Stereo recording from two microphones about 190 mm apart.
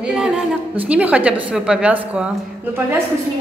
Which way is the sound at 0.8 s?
5° right (ahead or behind).